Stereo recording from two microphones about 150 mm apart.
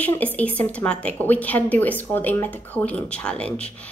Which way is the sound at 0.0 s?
10° left (ahead or behind).